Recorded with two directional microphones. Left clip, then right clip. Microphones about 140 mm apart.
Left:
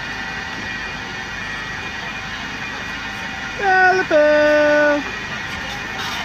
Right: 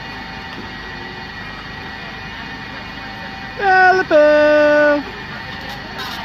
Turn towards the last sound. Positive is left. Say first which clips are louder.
# right 2 dB
turn(degrees=-20)  # may be behind; listen again after turning